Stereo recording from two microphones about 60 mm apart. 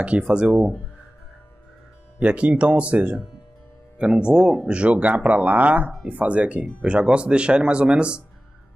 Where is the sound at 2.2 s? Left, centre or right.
Right.